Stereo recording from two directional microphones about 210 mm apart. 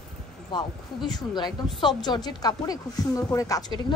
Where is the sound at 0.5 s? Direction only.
20° left (ahead or behind).